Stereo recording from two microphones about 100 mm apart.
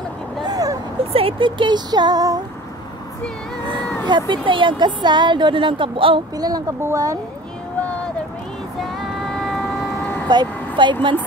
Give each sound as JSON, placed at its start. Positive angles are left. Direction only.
{"t": 0.4, "sound": "a sound", "side_deg": -40}
{"t": 1.1, "sound": "a woman's voice", "side_deg": -60}
{"t": 4.0, "sound": "a woman's voice", "side_deg": -50}
{"t": 6.3, "sound": "speech", "side_deg": -40}
{"t": 9.0, "sound": "female singing", "side_deg": 5}
{"t": 10.2, "sound": "a woman's voice", "side_deg": -45}